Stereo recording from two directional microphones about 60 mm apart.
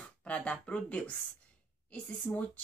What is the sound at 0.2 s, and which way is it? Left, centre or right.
Speech, centre.